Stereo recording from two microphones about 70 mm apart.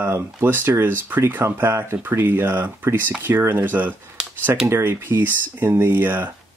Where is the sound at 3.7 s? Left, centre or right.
Right.